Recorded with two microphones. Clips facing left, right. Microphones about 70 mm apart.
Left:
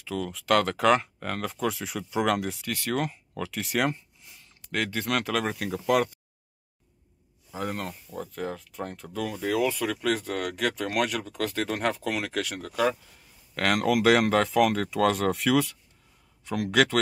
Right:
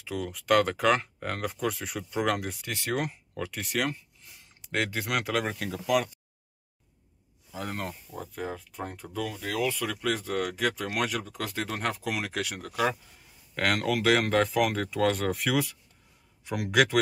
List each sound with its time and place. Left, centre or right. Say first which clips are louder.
0.0 s speech: left 2 dB; centre
2.6 s speech: left 2 dB; right; by 3.7 s centre
3.7 s speech: left 3 dB; left
4.6 s speech: even; centre
5.7 s speech: left 3 dB; left
7.7 s speech: left 2 dB; centre
9.2 s speech: left 4 dB; centre
13.6 s speech: left 3 dB; centre